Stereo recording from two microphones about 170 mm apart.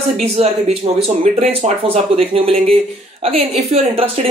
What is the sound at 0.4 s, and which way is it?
Speech, 35° right (ahead or behind).